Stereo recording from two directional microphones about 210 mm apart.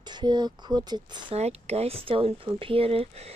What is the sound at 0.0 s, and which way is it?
Speech, 20° right (ahead or behind).